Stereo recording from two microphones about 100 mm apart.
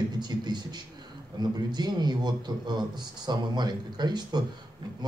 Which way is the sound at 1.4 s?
45° right (ahead or behind).